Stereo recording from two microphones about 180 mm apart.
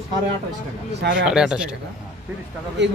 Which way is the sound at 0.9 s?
70° right (ahead or behind).